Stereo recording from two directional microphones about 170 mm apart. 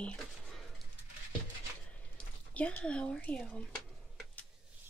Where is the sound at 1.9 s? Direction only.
10° left (ahead or behind).